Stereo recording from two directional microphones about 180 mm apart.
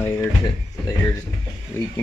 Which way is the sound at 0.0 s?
10° left (ahead or behind).